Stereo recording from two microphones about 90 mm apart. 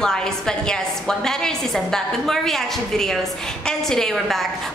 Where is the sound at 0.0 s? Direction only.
5° left (ahead or behind).